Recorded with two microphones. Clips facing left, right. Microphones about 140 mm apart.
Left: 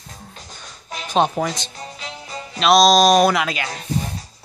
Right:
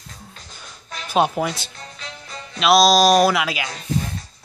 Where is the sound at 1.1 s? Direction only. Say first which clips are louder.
Even; 5° right (ahead or behind).